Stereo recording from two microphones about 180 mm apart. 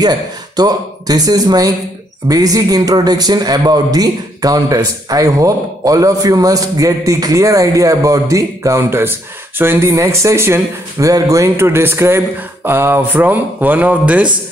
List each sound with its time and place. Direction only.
0.0 s a man's voice: 20° right (ahead or behind)